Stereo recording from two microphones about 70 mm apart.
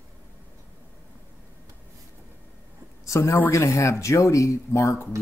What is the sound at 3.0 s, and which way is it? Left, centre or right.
Speech, left.